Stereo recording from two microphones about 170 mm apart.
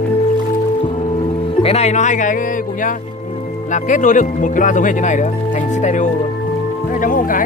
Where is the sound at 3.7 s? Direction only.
45° left (ahead or behind).